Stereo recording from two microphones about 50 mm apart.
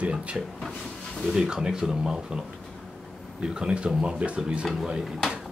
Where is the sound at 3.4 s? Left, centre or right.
Centre.